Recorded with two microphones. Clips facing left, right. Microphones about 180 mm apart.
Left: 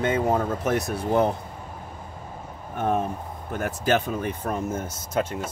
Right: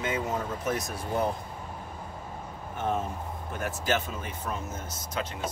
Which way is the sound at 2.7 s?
55° left (ahead or behind).